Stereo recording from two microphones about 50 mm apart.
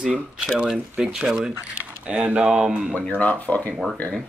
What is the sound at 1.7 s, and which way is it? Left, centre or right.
Speech, right.